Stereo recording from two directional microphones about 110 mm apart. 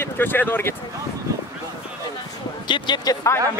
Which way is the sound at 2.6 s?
45° left (ahead or behind).